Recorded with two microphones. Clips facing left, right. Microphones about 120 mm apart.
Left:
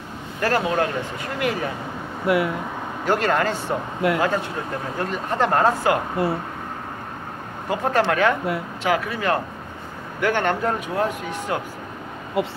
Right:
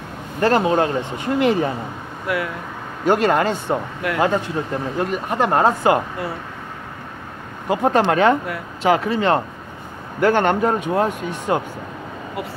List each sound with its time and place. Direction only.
0.4 s speech: 25° right (ahead or behind)
2.2 s speech: 25° left (ahead or behind)
3.1 s speech: 20° right (ahead or behind)
4.0 s speech: 25° left (ahead or behind)
4.9 s speech: 15° right (ahead or behind)
6.2 s speech: 25° left (ahead or behind)
7.7 s speech: 20° right (ahead or behind)
12.4 s speech: 25° left (ahead or behind)